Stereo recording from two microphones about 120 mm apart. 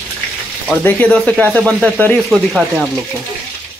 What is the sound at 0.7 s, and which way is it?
Speech, 15° left (ahead or behind).